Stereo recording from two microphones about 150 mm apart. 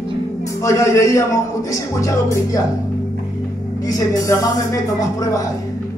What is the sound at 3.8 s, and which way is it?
Speech, 25° left (ahead or behind).